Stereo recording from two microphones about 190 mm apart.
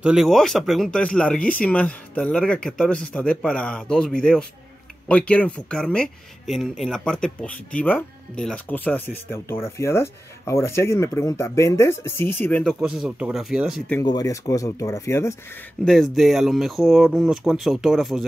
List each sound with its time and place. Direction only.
0.0 s speech: centre (ahead or behind)
12.8 s speech: 5° right (ahead or behind)
14.0 s speech: 20° left (ahead or behind)
15.8 s speech: centre (ahead or behind)